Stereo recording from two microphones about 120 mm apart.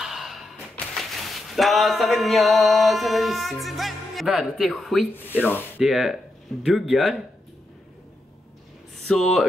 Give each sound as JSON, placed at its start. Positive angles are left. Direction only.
{"t": 0.0, "sound": "a sound", "side_deg": -5}
{"t": 5.4, "sound": "speech", "side_deg": 15}
{"t": 5.8, "sound": "speech", "side_deg": 0}
{"t": 8.9, "sound": "speech", "side_deg": 0}